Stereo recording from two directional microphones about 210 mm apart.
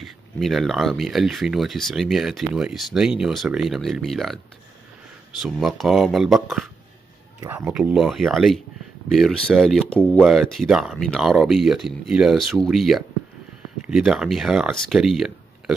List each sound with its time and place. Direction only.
0.0 s speech: centre (ahead or behind)
5.4 s speech: centre (ahead or behind)